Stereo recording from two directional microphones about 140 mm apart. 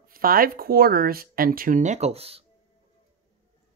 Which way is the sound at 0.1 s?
90° right.